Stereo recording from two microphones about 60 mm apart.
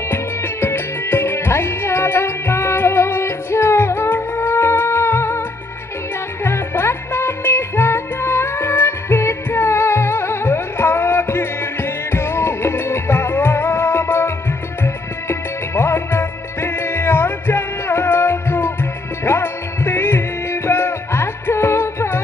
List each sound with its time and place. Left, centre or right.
0.1 s music: left
6.4 s music: left